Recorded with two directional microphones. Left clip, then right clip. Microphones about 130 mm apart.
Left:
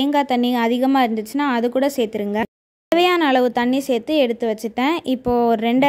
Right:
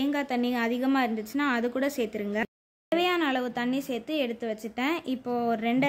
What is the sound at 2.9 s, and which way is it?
A woman's voice, 50° left (ahead or behind).